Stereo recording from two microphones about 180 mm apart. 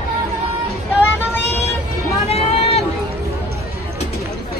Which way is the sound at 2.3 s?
35° left (ahead or behind).